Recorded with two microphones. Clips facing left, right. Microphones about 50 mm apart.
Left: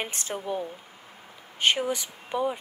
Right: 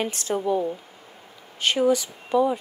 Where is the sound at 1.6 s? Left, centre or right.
Left.